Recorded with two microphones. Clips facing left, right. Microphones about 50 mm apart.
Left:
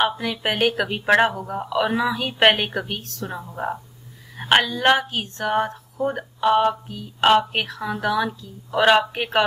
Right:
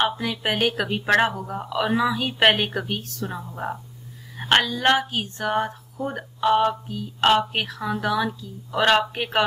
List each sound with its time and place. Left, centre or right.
0.0 s speech: centre